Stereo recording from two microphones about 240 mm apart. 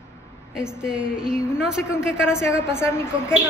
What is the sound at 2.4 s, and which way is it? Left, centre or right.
Speech, centre.